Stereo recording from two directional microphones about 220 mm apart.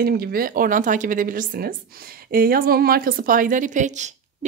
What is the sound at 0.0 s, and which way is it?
Speech, 45° right (ahead or behind).